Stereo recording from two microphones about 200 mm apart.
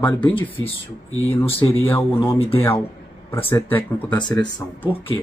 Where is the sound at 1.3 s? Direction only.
10° left (ahead or behind).